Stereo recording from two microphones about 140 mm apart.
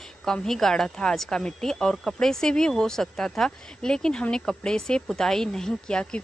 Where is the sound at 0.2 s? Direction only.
5° left (ahead or behind).